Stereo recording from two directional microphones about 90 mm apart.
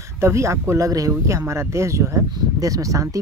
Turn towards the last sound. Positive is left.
turn(degrees=-40)  # may be behind; listen again after turning